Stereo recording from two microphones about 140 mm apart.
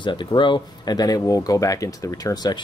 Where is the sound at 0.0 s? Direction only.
35° left (ahead or behind).